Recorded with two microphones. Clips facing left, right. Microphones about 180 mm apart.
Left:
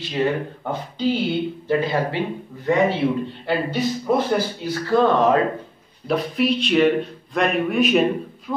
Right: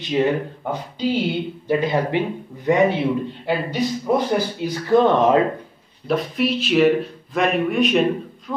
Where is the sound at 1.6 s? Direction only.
20° right (ahead or behind).